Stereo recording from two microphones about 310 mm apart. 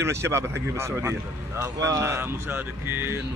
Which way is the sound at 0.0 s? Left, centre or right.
Centre.